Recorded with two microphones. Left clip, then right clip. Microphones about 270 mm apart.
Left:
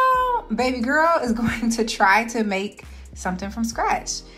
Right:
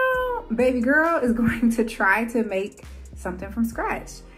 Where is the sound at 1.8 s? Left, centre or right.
Left.